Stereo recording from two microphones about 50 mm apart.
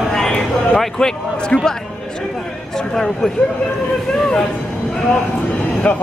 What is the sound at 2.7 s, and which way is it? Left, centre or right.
Speech, centre.